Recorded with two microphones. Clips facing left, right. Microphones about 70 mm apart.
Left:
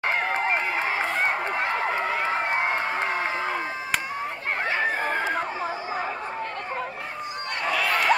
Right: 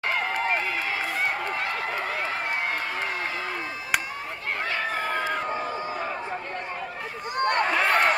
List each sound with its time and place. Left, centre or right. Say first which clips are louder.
0.0 s run: left 2 dB; left
7.3 s a sound: right 13 dB; right
7.7 s run: left 1 dB; right